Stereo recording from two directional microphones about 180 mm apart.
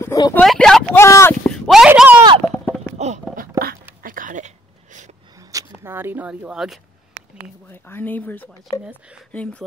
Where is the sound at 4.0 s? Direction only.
50° right (ahead or behind).